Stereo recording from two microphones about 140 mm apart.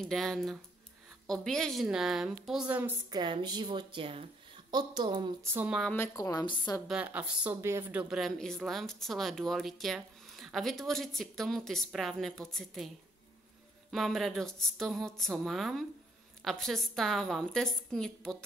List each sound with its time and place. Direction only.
0.0 s a woman's voice: centre (ahead or behind)
3.1 s speech: 35° right (ahead or behind)
4.6 s speech: 30° right (ahead or behind)
5.4 s speech: 15° right (ahead or behind)
6.1 s a woman's voice: 25° left (ahead or behind)
6.9 s a woman's voice: 10° right (ahead or behind)